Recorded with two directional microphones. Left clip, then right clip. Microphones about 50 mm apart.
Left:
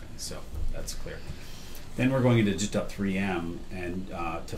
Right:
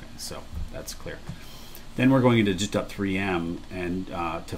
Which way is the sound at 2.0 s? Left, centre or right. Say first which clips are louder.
Right 5 dB; centre.